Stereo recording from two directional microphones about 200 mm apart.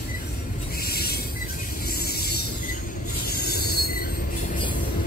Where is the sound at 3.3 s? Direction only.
50° left (ahead or behind).